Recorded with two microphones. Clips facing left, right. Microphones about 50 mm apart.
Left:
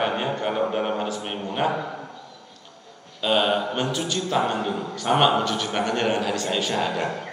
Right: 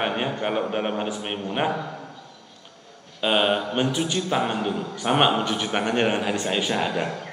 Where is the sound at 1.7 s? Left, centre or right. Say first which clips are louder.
Left 1 dB; centre.